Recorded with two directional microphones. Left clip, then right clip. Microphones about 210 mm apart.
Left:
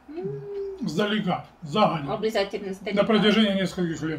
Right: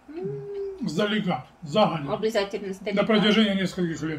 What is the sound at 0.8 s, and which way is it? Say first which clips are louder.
A man's voice: even; 10° left (ahead or behind).